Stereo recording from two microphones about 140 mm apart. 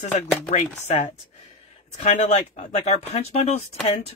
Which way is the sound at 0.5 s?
50° left (ahead or behind).